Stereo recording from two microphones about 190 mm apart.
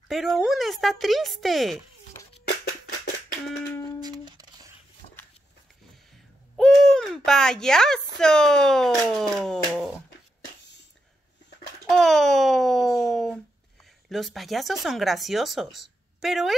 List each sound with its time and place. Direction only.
0.1 s speech: centre (ahead or behind)
4.0 s music: 20° right (ahead or behind)
6.5 s speech: centre (ahead or behind)
11.9 s a sound: centre (ahead or behind)
14.0 s speech: centre (ahead or behind)